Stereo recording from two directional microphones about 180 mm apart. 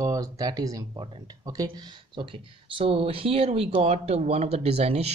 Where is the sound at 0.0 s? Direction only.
20° right (ahead or behind).